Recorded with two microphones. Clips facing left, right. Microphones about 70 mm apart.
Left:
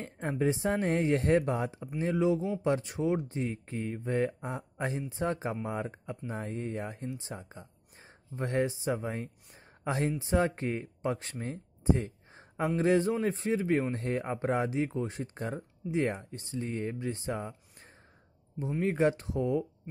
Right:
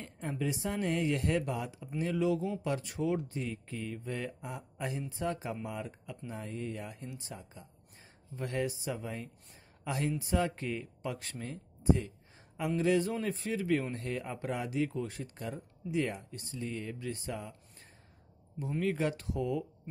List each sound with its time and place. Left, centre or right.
0.0 s speech: left
18.6 s speech: left